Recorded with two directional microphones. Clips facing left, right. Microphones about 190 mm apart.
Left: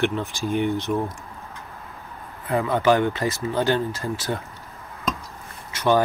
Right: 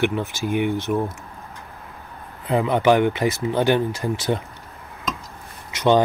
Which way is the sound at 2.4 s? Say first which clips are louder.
Right 2 dB; 15° right (ahead or behind).